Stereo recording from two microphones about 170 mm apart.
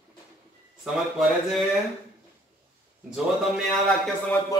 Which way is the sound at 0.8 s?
Centre (ahead or behind).